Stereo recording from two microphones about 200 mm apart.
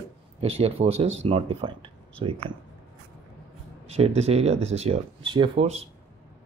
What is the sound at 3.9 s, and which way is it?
Speech, 30° right (ahead or behind).